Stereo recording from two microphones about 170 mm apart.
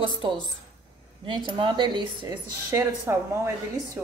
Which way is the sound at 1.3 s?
30° right (ahead or behind).